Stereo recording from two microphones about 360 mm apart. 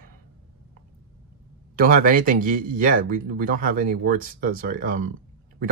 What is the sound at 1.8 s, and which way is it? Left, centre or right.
Speech, right.